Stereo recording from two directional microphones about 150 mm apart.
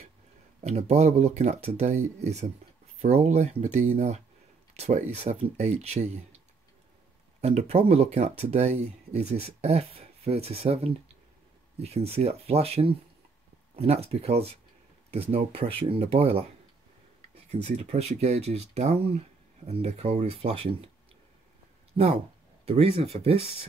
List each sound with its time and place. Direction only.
0.6 s speech: 45° right (ahead or behind)
7.4 s speech: 45° right (ahead or behind)
17.5 s speech: 45° right (ahead or behind)
22.7 s speech: 40° right (ahead or behind)